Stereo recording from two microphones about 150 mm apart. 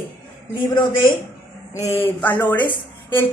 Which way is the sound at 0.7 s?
30° left (ahead or behind).